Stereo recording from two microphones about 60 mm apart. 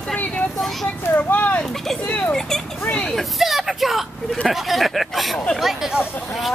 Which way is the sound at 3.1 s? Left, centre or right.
Centre.